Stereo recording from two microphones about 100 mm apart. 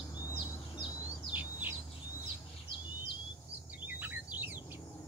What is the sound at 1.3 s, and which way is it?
Bird, 15° right (ahead or behind).